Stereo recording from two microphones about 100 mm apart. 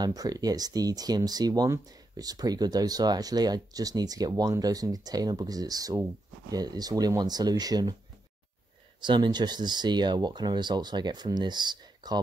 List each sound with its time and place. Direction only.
0.0 s speech: 40° right (ahead or behind)
9.0 s speech: 50° right (ahead or behind)